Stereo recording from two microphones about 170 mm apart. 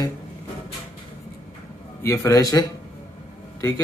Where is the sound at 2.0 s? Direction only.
20° left (ahead or behind).